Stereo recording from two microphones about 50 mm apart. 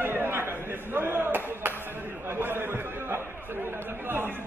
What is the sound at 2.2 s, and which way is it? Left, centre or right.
Chatter, right.